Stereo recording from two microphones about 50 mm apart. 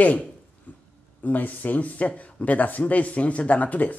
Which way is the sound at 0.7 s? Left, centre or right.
Left.